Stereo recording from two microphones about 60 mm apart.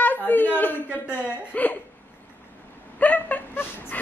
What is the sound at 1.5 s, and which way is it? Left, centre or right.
Speech, left.